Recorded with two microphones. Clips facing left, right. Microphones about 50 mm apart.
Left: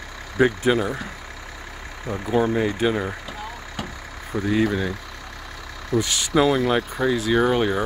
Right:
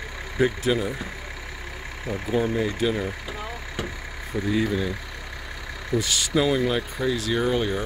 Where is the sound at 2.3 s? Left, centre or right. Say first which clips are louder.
Left 3 dB; left.